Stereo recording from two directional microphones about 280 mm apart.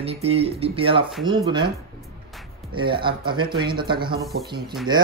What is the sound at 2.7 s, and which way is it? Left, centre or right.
Speech, centre.